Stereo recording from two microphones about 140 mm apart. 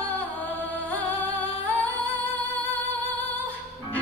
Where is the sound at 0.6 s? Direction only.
10° left (ahead or behind).